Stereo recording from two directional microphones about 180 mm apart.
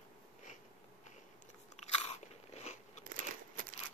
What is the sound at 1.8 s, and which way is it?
Crunch, 35° left (ahead or behind).